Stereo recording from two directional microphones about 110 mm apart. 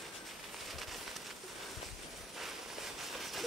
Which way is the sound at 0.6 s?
Centre (ahead or behind).